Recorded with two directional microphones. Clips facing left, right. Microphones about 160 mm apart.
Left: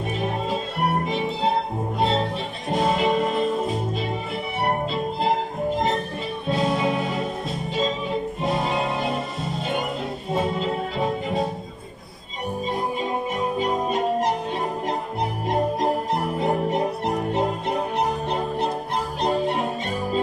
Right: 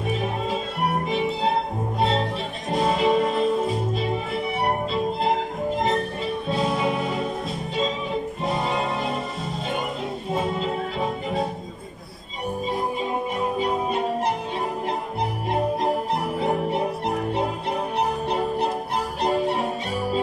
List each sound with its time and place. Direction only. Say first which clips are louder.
0.1 s music: even; centre (ahead or behind)
2.0 s music: even; centre (ahead or behind)
6.5 s music: left 2 dB; centre (ahead or behind)
10.3 s music: left 2 dB; centre (ahead or behind)
13.6 s music: left 2 dB; 5° right (ahead or behind)
15.4 s music: left 1 dB; 5° right (ahead or behind)